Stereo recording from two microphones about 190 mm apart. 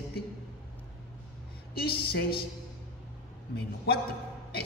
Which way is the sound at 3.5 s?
60° left (ahead or behind).